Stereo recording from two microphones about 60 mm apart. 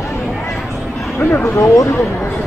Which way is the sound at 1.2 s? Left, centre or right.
Left.